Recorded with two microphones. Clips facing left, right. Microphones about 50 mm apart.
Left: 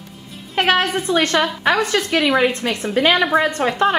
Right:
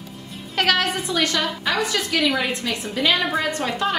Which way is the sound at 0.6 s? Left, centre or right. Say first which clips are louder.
Left 4 dB; left.